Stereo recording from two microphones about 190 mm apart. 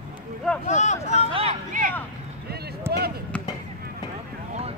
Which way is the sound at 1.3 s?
30° right (ahead or behind).